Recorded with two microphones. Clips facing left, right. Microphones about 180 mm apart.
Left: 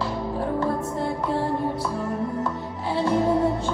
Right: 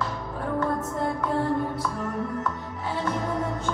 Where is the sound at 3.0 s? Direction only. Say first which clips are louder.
Left 8 dB; 30° left (ahead or behind).